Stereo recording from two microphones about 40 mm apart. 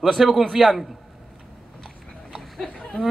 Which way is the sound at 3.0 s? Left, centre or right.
Left.